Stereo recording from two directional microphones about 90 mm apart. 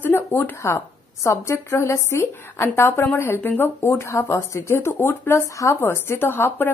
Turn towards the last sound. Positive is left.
turn(degrees=25)  # may be behind; listen again after turning